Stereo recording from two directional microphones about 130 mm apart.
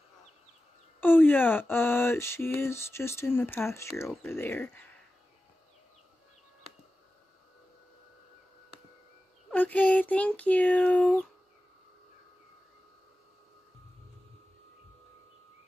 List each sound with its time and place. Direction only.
1.0 s speech: 15° left (ahead or behind)
9.5 s speech: 10° left (ahead or behind)